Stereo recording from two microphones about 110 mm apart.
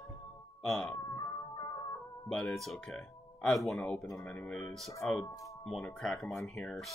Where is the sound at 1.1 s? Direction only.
40° left (ahead or behind).